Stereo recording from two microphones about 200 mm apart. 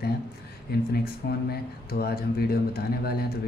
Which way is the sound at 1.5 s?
50° left (ahead or behind).